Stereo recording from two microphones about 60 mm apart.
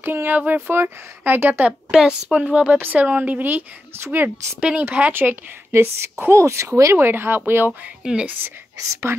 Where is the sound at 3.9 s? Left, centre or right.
Right.